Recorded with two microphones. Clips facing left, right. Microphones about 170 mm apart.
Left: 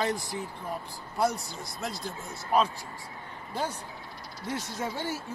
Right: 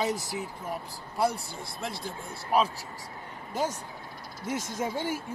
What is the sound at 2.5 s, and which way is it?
Speech, 5° right (ahead or behind).